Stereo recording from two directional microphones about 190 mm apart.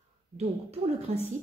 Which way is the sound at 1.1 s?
35° right (ahead or behind).